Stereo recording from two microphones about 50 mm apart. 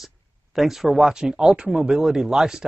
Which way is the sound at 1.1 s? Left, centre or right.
Centre.